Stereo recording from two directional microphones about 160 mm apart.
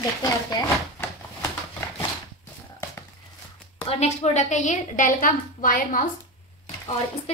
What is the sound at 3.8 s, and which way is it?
A woman's voice, 45° left (ahead or behind).